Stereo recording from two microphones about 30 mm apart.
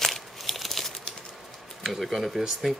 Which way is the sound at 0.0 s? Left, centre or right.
Centre.